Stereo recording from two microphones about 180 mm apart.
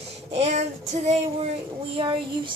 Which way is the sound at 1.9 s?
25° right (ahead or behind).